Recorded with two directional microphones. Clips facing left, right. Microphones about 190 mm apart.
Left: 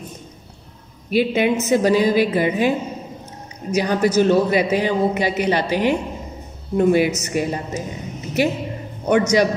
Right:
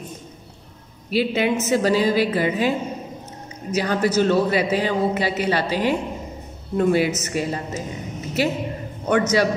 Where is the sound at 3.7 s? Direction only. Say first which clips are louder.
Left 3 dB; 15° left (ahead or behind).